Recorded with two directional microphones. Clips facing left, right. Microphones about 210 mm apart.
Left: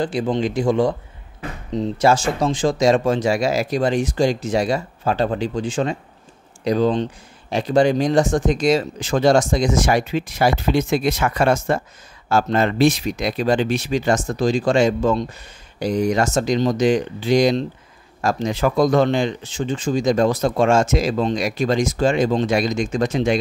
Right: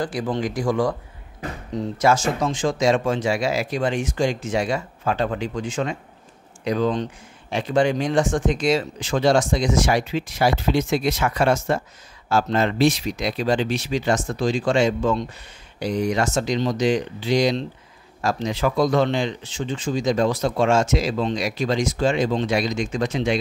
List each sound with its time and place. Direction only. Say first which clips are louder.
0.0 s speech: left 4 dB; 25° left (ahead or behind); by 23.4 s 45° left (ahead or behind)